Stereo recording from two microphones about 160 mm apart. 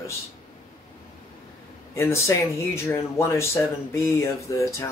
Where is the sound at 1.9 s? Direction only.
15° left (ahead or behind).